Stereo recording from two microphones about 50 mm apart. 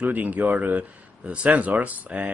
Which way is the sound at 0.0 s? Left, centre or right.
Right.